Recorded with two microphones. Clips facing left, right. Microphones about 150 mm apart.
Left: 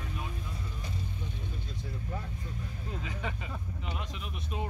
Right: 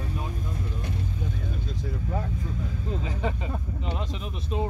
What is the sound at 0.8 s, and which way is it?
Vehicle, 80° right.